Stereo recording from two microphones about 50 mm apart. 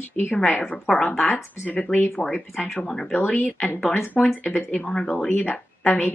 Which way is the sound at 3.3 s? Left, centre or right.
Left.